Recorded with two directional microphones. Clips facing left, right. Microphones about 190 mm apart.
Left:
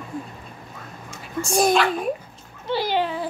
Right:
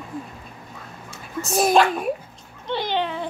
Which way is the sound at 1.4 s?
5° right (ahead or behind).